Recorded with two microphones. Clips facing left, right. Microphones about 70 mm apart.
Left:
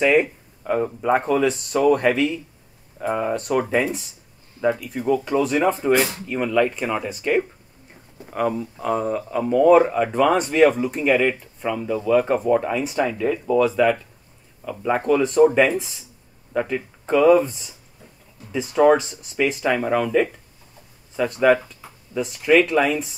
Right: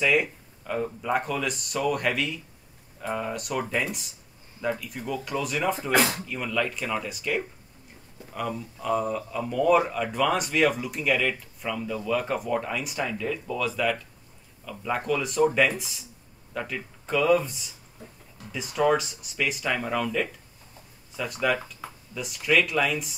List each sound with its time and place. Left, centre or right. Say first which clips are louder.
0.0 s speech: left 6 dB; left
21.2 s speech: left 9 dB; left